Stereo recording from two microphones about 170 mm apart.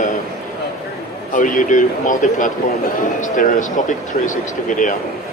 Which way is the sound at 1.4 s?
50° left (ahead or behind).